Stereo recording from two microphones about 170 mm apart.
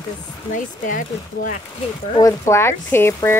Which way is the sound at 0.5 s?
50° left (ahead or behind).